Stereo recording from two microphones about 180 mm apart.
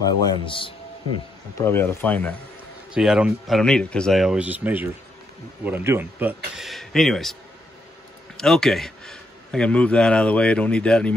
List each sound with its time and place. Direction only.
0.0 s a man's voice: 20° left (ahead or behind)
1.6 s speech: 10° left (ahead or behind)
2.9 s a man's voice: 5° right (ahead or behind)
8.4 s a man's voice: 5° left (ahead or behind)